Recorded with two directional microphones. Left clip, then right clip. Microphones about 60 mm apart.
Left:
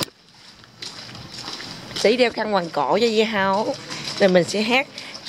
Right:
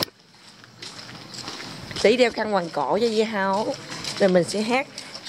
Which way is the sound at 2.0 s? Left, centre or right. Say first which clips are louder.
Even; centre.